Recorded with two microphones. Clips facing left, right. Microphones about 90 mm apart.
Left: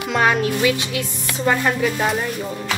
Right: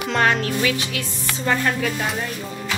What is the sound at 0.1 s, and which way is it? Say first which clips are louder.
Speech: left 2 dB; 10° left (ahead or behind).